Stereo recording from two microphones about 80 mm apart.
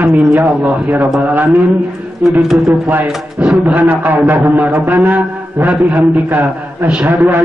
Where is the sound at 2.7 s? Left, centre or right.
Right.